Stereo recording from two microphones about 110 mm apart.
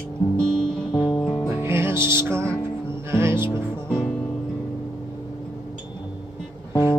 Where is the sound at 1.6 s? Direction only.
25° right (ahead or behind).